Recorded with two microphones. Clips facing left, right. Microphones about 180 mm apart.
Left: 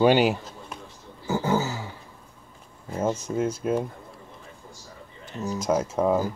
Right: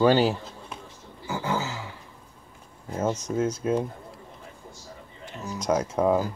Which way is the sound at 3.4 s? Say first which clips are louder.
Even; 5° left (ahead or behind).